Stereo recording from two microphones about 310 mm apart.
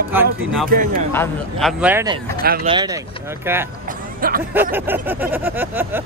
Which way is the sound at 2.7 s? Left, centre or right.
Centre.